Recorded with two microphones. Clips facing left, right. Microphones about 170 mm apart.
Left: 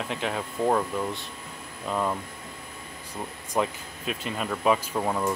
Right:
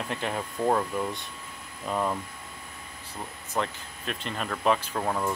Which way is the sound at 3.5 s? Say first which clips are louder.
Left 4 dB; 5° left (ahead or behind).